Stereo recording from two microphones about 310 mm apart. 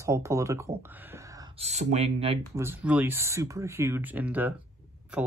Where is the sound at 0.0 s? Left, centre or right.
Centre.